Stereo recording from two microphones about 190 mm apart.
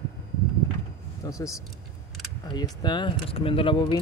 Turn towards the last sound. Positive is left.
turn(degrees=25)  # may be behind; listen again after turning